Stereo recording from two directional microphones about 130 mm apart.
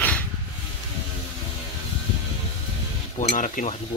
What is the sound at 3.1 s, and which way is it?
Speech, 65° left (ahead or behind).